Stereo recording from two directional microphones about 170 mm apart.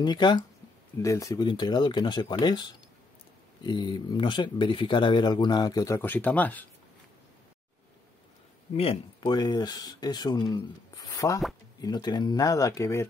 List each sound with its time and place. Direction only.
0.0 s speech: 25° left (ahead or behind); by 6.6 s 10° left (ahead or behind)
8.7 s speech: 30° left (ahead or behind)